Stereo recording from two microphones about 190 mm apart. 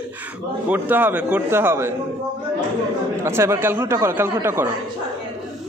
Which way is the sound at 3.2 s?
15° right (ahead or behind).